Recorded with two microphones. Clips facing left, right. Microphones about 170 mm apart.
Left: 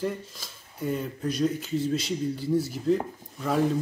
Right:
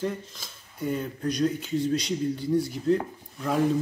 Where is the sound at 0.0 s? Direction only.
Centre (ahead or behind).